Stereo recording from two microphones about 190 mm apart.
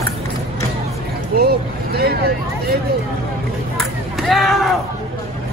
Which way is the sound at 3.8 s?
Centre (ahead or behind).